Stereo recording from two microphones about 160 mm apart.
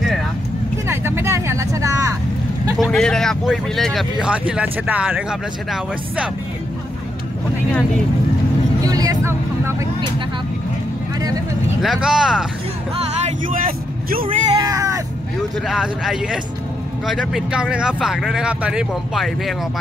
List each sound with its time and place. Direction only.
0.8 s vehicle: 15° right (ahead or behind)
2.8 s speech: centre (ahead or behind)
8.8 s speech: 25° right (ahead or behind)
11.8 s speech: centre (ahead or behind)
13.5 s speech: 60° right (ahead or behind)
14.2 s speech: 35° right (ahead or behind)
14.7 s speech: 20° right (ahead or behind)
15.6 s speech: 5° right (ahead or behind)